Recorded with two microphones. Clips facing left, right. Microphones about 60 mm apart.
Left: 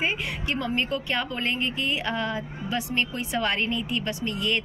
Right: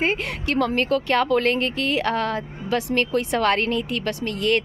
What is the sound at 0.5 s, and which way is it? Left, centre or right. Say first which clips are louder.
Speech: right 7 dB; right.